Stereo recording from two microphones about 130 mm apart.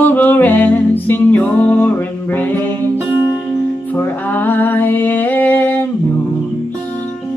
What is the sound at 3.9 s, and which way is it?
Music, 15° left (ahead or behind).